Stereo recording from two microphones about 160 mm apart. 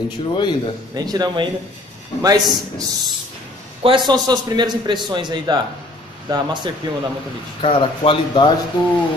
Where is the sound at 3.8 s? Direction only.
30° right (ahead or behind).